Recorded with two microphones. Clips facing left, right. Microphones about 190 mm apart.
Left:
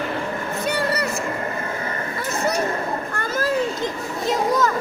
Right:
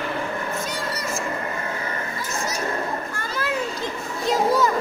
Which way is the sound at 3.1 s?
50° left (ahead or behind).